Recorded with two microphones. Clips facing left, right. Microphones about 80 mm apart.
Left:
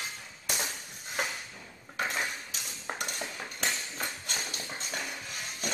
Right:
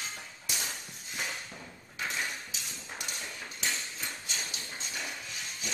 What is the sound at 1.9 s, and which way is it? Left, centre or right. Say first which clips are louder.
Dishes: left 3 dB; left.